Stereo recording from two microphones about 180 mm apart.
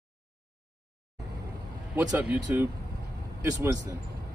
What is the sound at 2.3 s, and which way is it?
Speech, 10° right (ahead or behind).